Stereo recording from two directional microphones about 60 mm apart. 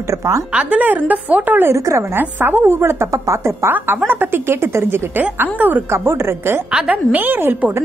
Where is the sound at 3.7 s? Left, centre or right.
Right.